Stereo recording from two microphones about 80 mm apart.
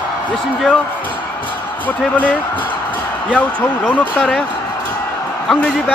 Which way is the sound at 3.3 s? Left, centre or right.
Centre.